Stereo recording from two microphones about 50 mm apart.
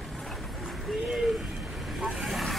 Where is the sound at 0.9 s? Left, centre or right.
Centre.